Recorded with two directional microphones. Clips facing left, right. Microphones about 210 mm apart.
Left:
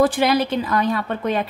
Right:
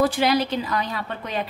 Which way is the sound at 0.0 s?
50° left (ahead or behind).